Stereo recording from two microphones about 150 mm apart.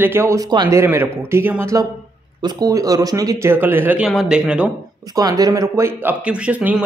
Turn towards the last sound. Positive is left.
turn(degrees=-10)  # may be behind; listen again after turning